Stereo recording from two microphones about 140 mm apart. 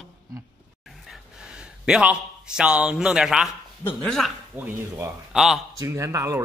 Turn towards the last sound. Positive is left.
turn(degrees=-20)  # may be behind; listen again after turning